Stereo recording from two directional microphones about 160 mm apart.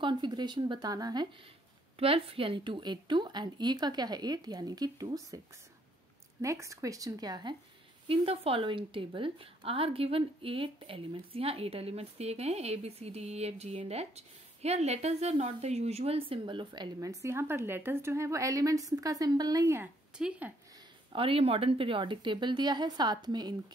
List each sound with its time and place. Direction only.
0.0 s speech: 30° right (ahead or behind)
2.0 s a woman's voice: 35° right (ahead or behind)
6.4 s a woman's voice: 20° right (ahead or behind)
8.1 s speech: 35° right (ahead or behind); by 19.9 s 20° right (ahead or behind)
20.2 s speech: 10° right (ahead or behind)
21.1 s a woman's voice: 35° right (ahead or behind)